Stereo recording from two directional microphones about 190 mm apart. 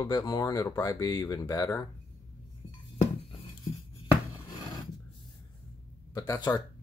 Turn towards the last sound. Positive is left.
turn(degrees=20)  # may be behind; listen again after turning